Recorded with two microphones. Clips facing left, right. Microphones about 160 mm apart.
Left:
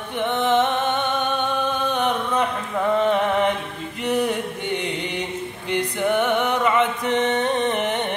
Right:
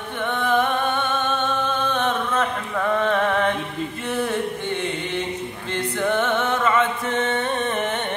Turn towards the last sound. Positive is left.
turn(degrees=20)  # may be behind; listen again after turning